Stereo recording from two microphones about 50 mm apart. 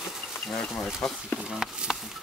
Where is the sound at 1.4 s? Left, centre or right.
Centre.